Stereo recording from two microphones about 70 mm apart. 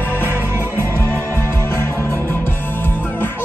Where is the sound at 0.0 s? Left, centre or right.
Left.